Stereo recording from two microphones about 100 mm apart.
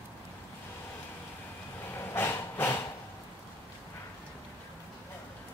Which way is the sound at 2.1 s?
25° left (ahead or behind).